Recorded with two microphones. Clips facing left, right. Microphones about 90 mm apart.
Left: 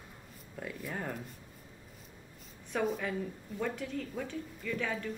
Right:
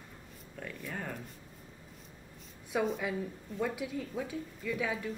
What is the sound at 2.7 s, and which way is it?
A woman's voice, 5° right (ahead or behind).